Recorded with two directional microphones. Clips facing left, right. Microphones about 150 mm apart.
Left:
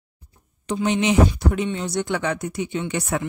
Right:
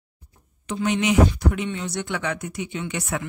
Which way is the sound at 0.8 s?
30° left (ahead or behind).